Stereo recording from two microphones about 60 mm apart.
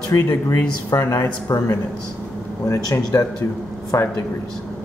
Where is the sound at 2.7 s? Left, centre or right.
Left.